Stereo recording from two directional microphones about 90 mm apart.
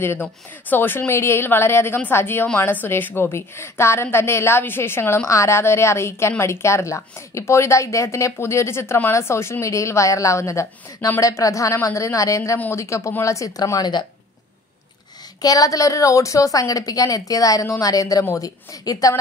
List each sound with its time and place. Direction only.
0.0 s a woman's voice: 25° left (ahead or behind); by 14.0 s 50° left (ahead or behind)
15.4 s a woman's voice: 40° left (ahead or behind)